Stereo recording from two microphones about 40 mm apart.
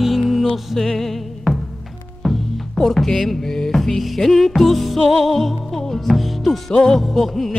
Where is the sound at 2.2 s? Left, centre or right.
Centre.